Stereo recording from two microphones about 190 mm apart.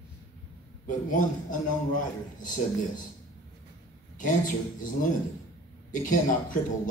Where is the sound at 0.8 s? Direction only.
45° left (ahead or behind).